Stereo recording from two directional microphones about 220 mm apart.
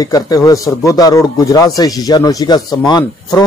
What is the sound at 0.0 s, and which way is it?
A man's voice, 15° left (ahead or behind).